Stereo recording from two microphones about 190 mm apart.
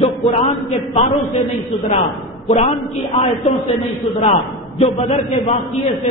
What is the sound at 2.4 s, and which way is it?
A woman's voice, 35° left (ahead or behind).